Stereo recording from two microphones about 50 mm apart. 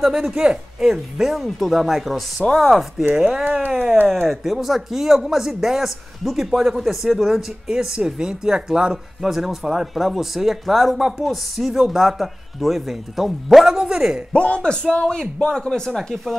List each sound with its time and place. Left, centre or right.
0.0 s a man's voice: centre
2.7 s speech: centre
3.6 s speech: right
4.3 s speech: centre
14.3 s a man's voice: left